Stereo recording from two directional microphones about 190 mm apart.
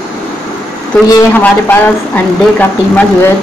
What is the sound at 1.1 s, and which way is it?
Speech, 10° left (ahead or behind).